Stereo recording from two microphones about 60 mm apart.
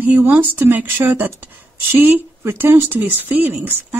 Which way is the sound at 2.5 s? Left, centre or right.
Right.